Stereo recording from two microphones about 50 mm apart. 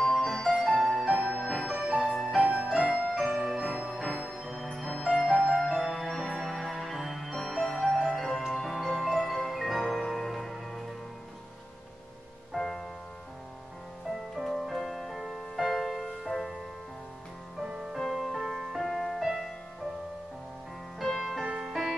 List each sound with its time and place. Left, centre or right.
0.2 s music: centre
1.1 s music: right
1.4 s music: centre
2.4 s music: right
3.1 s music: centre
4.4 s music: centre
4.6 s music: centre
6.0 s music: centre
6.3 s music: centre
12.5 s music: centre
14.3 s music: centre
17.6 s music: centre
17.9 s music: centre
21.0 s music: centre